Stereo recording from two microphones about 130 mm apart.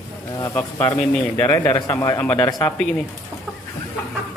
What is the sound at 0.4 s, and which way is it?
A man's voice, 15° left (ahead or behind).